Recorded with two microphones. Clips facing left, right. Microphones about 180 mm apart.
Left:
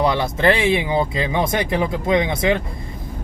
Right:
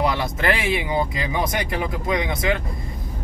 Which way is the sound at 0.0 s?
25° left (ahead or behind).